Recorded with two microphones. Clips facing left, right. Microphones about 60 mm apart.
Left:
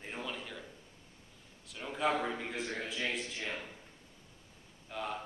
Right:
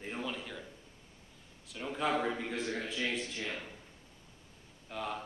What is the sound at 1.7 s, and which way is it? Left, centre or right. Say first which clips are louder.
A man's voice: even; centre.